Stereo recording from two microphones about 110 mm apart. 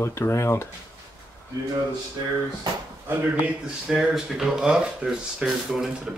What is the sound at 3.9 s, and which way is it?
Speech, 5° right (ahead or behind).